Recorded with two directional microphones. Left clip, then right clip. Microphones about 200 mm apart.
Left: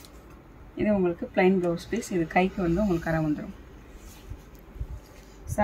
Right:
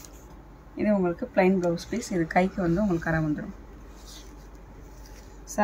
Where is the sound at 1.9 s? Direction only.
10° right (ahead or behind).